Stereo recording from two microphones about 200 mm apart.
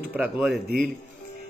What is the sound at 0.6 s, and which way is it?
Speech, 50° right (ahead or behind).